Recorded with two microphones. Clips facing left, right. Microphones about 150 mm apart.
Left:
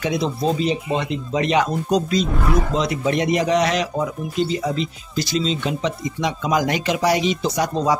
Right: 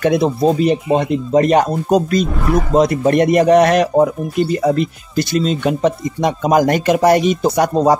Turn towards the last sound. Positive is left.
turn(degrees=-55)  # may be behind; listen again after turning